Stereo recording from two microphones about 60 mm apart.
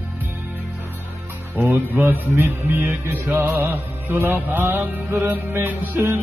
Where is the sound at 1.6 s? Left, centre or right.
Right.